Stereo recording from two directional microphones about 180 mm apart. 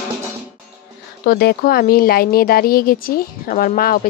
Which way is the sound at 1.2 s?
55° left (ahead or behind).